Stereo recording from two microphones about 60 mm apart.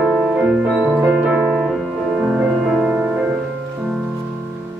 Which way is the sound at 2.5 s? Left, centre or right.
Centre.